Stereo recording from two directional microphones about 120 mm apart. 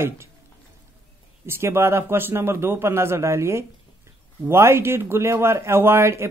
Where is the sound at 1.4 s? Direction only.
20° right (ahead or behind).